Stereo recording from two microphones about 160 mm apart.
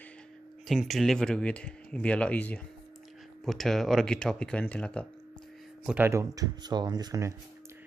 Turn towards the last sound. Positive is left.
turn(degrees=-20)  # may be behind; listen again after turning